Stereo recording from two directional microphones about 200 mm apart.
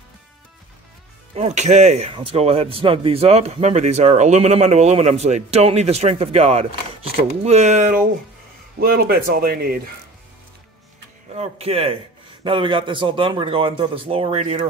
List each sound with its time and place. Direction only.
1.3 s speech: 35° right (ahead or behind); by 9.8 s 50° right (ahead or behind)
11.3 s speech: 30° right (ahead or behind)